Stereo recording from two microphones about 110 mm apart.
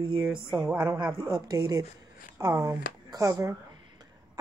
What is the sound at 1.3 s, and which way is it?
Speech, 35° right (ahead or behind).